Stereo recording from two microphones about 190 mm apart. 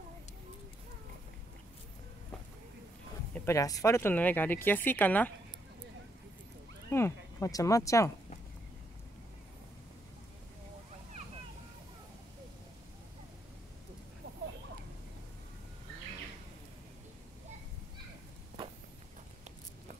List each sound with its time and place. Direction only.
3.3 s speech: 15° left (ahead or behind)
6.9 s speech: 15° left (ahead or behind)